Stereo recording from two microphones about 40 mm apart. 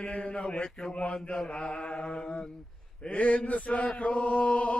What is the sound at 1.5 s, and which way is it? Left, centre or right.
Male singing, left.